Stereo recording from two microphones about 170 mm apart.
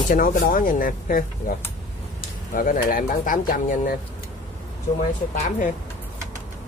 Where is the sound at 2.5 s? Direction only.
55° left (ahead or behind).